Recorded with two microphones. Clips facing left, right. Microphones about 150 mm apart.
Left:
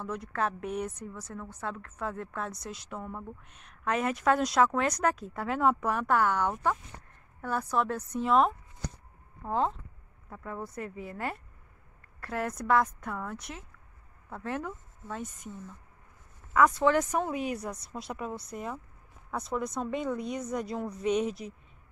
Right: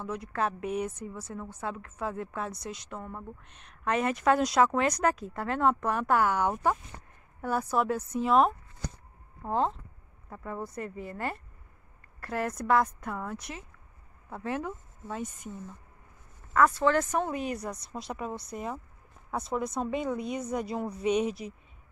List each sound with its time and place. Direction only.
0.0 s a woman's voice: centre (ahead or behind)
16.5 s a woman's voice: 15° left (ahead or behind); by 21.5 s 5° right (ahead or behind)